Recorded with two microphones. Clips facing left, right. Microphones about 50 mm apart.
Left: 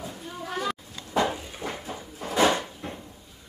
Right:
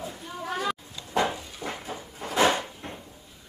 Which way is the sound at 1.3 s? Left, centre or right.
Left.